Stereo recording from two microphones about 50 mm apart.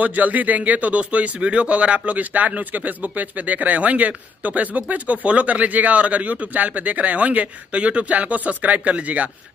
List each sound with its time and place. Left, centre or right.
0.0 s speech: right